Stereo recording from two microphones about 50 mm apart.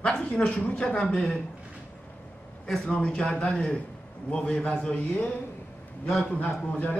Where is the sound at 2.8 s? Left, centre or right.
Centre.